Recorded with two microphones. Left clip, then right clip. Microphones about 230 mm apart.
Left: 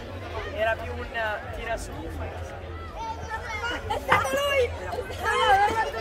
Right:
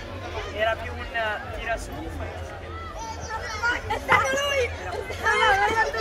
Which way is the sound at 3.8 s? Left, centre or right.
Left.